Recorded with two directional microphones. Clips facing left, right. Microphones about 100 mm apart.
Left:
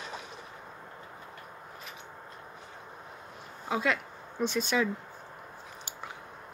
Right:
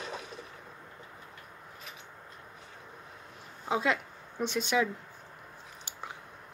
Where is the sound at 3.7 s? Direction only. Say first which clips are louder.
Even; 20° right (ahead or behind).